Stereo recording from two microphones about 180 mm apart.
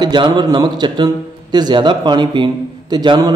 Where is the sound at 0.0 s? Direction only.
25° right (ahead or behind).